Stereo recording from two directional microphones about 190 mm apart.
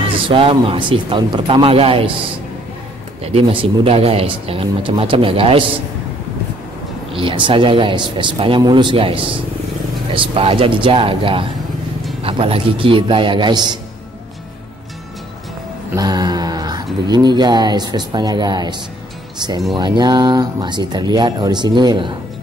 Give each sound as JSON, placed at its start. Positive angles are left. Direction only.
{"t": 0.3, "sound": "speech", "side_deg": -30}
{"t": 3.3, "sound": "speech", "side_deg": -30}
{"t": 7.1, "sound": "speech", "side_deg": -25}
{"t": 15.9, "sound": "speech", "side_deg": -20}